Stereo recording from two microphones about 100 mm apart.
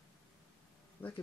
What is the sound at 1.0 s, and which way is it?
Speech, 20° left (ahead or behind).